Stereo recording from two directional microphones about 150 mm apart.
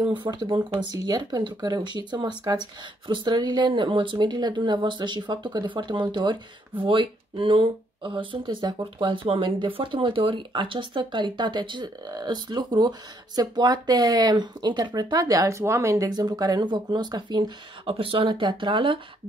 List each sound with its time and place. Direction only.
0.0 s speech: 30° right (ahead or behind)